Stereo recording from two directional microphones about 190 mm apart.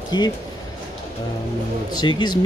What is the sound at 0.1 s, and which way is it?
Speech, 20° left (ahead or behind).